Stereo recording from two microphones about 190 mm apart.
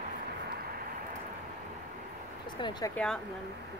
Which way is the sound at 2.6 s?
25° left (ahead or behind).